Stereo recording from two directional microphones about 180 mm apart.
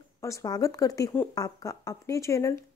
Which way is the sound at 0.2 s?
20° left (ahead or behind).